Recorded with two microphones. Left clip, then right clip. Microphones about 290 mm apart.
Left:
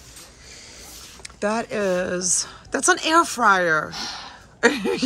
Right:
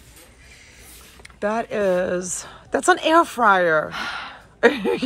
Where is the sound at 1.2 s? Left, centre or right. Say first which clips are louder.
Right 1 dB; centre.